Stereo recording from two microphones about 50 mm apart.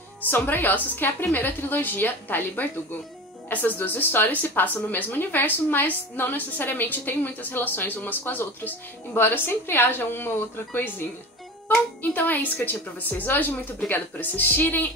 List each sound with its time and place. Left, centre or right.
0.2 s a woman's voice: left